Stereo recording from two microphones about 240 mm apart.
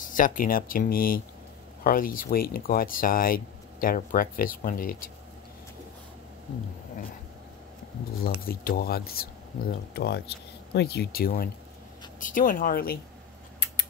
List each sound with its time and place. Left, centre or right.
0.0 s speech: left
8.2 s speech: left